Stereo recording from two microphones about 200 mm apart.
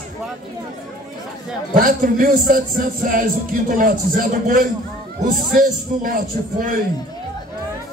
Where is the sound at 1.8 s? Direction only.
45° right (ahead or behind).